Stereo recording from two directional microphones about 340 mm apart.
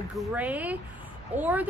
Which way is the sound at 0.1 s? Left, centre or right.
Centre.